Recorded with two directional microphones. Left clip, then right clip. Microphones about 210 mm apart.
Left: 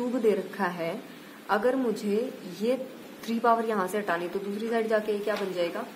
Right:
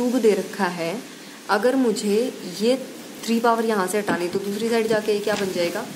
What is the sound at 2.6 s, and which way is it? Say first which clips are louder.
Speech: right 7 dB; 15° right (ahead or behind).